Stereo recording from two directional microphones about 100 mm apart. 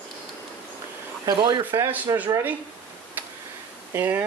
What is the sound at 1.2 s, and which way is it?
Speech, 50° right (ahead or behind).